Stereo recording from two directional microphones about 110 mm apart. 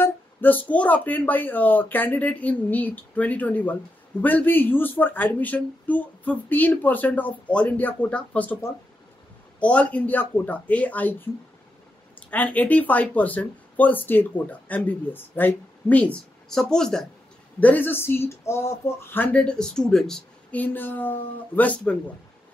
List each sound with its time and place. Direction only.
0.0 s speech: 15° left (ahead or behind)
9.6 s speech: 10° left (ahead or behind)
17.6 s speech: 15° left (ahead or behind)
19.3 s speech: 10° left (ahead or behind)
20.5 s speech: 15° left (ahead or behind)